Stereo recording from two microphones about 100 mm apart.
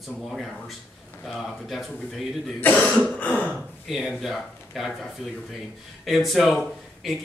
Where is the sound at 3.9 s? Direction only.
Centre (ahead or behind).